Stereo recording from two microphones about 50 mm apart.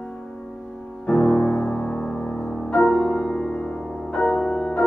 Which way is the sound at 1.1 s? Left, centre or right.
Centre.